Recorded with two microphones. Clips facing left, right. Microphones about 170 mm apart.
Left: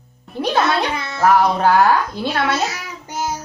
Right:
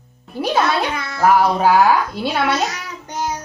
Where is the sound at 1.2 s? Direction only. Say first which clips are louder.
Even; 10° right (ahead or behind).